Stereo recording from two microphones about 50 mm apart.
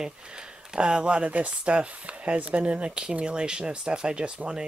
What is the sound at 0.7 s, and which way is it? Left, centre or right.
Speech, centre.